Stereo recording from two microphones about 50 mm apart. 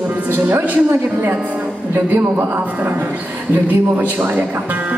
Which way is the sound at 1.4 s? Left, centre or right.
Right.